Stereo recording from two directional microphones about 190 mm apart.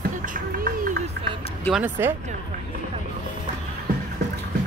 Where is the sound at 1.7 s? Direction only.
10° right (ahead or behind).